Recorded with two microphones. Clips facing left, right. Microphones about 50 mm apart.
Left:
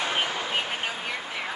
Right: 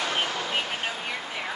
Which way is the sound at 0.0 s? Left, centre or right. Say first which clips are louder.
Even; centre.